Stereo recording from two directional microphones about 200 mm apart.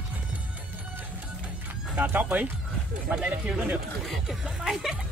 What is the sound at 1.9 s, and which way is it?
Speech, 5° right (ahead or behind).